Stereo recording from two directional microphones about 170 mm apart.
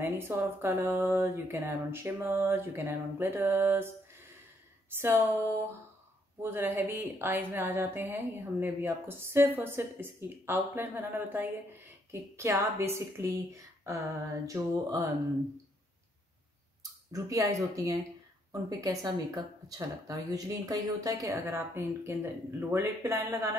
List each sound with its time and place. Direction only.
0.0 s a woman's voice: 15° right (ahead or behind)
4.9 s a woman's voice: 15° right (ahead or behind)
16.8 s speech: 20° right (ahead or behind)